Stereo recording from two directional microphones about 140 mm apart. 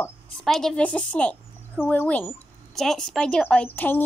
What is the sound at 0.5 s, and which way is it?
Speech, 5° left (ahead or behind).